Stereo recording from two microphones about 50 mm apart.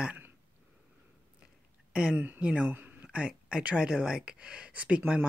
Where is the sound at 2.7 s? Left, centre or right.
Right.